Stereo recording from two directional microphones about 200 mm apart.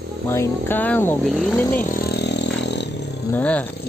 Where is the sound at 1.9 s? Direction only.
50° left (ahead or behind).